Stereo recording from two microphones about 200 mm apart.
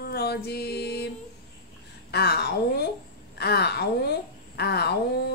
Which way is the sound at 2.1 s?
55° left (ahead or behind).